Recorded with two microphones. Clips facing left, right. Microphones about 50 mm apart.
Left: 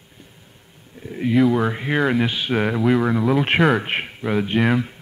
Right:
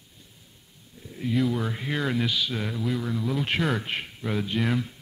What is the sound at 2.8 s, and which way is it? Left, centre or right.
Speech, left.